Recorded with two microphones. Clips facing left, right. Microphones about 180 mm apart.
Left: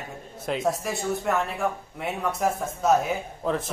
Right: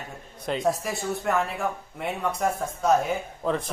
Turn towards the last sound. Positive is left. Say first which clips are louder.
# even
turn(degrees=0)  # may be behind; listen again after turning